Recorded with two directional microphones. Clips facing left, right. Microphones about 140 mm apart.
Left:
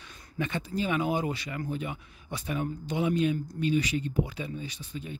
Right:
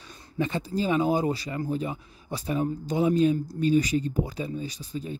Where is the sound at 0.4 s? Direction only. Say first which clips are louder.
Right 4 dB; 35° right (ahead or behind).